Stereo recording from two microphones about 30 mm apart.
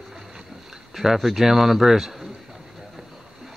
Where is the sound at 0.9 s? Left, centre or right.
Centre.